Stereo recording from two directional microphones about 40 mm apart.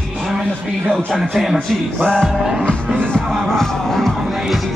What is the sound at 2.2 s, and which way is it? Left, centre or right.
Music, centre.